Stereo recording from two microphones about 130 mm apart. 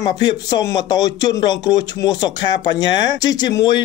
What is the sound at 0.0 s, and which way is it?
Speech, 35° left (ahead or behind).